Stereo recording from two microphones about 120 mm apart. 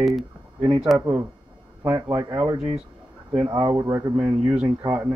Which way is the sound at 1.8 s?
30° right (ahead or behind).